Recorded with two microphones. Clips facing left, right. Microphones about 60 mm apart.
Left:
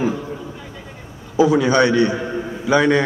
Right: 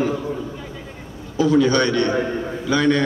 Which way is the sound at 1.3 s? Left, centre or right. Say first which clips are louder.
Left 2 dB; centre.